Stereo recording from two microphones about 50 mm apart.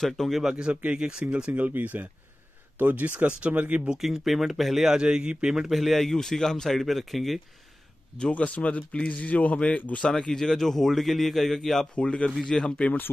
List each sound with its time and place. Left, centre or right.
0.3 s a man's voice: centre
0.6 s speech: right
1.5 s speech: right
4.0 s a man's voice: centre
4.9 s a man's voice: centre
5.7 s a man's voice: centre
8.3 s speech: left
10.0 s a man's voice: centre
11.9 s a man's voice: left